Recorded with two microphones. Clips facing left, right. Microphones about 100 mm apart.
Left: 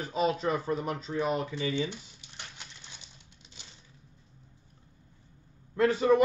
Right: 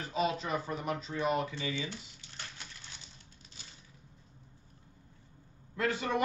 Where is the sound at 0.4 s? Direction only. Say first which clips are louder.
Left 6 dB; 35° left (ahead or behind).